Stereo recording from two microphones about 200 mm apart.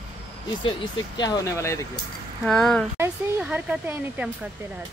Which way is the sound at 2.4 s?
5° left (ahead or behind).